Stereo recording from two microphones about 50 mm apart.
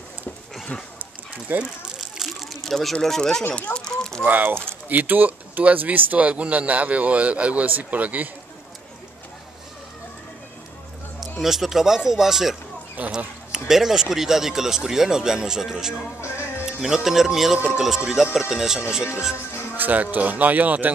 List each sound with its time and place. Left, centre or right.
1.5 s speech: right
2.0 s a sound: centre
2.6 s speech: centre
3.7 s a sound: centre
4.2 s speech: right
11.1 s speech: centre
13.0 s speech: right
13.5 s speech: centre
16.2 s music: left
16.6 s speech: centre
19.8 s speech: right